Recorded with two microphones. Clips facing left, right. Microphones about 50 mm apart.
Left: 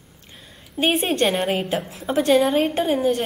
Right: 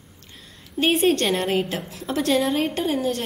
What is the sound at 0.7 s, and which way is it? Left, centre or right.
A woman's voice, centre.